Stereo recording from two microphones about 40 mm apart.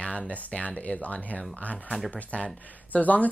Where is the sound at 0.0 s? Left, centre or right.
Left.